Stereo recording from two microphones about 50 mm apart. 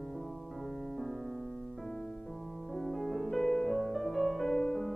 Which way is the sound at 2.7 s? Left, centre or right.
Centre.